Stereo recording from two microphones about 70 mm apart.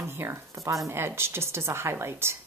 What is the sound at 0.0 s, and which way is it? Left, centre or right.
Speech, right.